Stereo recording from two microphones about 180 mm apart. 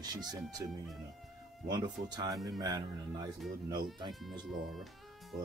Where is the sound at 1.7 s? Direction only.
20° right (ahead or behind).